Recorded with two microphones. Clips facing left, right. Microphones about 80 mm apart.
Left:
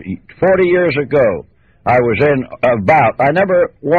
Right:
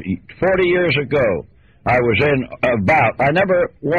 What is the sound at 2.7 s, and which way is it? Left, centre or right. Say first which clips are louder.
Speech: left 5 dB; centre.